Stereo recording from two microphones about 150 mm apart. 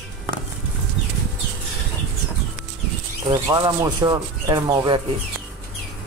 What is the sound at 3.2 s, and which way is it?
Speech, 25° right (ahead or behind).